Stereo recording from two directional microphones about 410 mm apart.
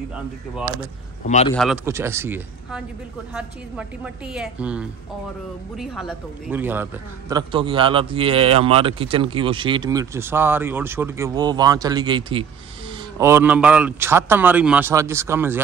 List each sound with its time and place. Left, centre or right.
0.1 s a man's voice: centre
0.7 s speech: centre
1.5 s a man's voice: centre